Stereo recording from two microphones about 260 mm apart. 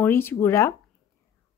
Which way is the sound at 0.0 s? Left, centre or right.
Centre.